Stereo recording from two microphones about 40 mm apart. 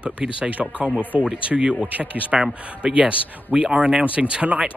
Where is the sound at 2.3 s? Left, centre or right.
Centre.